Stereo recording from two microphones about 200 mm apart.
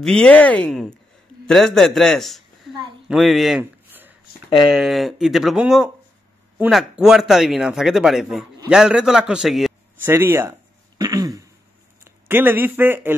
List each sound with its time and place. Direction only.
0.0 s a man's voice: 5° left (ahead or behind)
10.1 s speech: 10° right (ahead or behind)
11.0 s throat clearing: 20° right (ahead or behind)
12.0 s speech: 10° right (ahead or behind)